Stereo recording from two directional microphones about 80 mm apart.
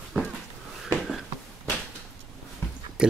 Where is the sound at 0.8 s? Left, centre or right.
Centre.